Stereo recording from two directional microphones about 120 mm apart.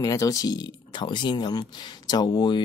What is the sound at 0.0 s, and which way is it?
Speech, 30° left (ahead or behind).